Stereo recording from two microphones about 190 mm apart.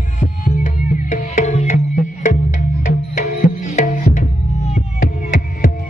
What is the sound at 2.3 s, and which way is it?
Music, 50° left (ahead or behind).